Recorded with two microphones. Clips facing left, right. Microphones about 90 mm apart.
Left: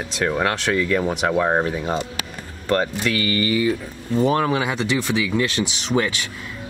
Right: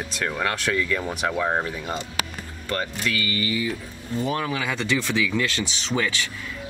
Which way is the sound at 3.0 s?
65° left (ahead or behind).